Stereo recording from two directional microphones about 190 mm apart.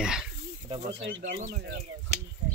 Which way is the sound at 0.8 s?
30° right (ahead or behind).